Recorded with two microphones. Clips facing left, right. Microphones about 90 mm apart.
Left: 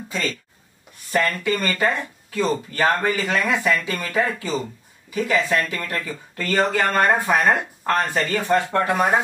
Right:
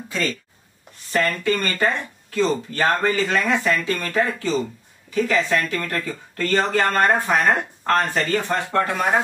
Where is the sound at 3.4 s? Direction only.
15° left (ahead or behind).